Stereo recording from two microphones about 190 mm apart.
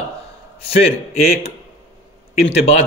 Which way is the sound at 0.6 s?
30° left (ahead or behind).